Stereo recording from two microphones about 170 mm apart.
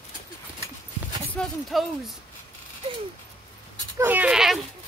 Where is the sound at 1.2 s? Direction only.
5° left (ahead or behind).